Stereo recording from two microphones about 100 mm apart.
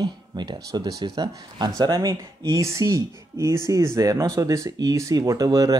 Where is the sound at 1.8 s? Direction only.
35° right (ahead or behind).